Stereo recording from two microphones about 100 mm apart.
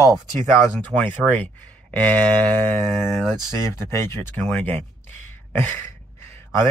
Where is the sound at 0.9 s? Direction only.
15° left (ahead or behind).